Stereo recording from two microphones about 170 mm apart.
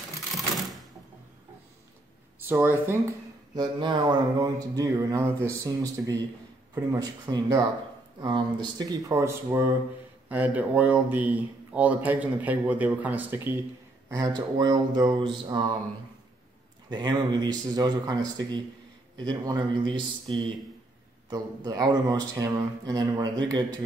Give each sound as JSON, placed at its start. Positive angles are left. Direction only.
{"t": 2.4, "sound": "speech", "side_deg": -15}
{"t": 3.5, "sound": "speech", "side_deg": -25}
{"t": 16.9, "sound": "speech", "side_deg": -25}